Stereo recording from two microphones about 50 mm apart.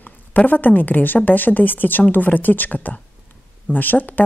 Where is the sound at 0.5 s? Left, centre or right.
Left.